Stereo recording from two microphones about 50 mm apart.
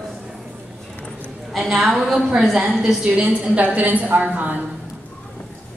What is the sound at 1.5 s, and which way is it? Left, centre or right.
A woman's voice, centre.